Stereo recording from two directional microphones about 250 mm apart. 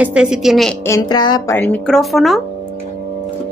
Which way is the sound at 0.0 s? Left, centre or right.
Centre.